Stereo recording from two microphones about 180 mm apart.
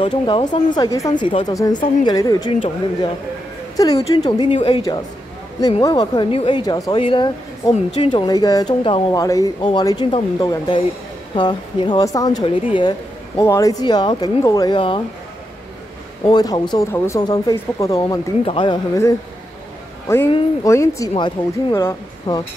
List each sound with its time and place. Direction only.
0.3 s speech: 25° left (ahead or behind)
16.3 s speech: 25° left (ahead or behind)
20.1 s speech: 15° left (ahead or behind)